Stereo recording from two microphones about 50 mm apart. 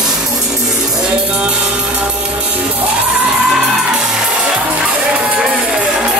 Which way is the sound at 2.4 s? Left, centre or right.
Right.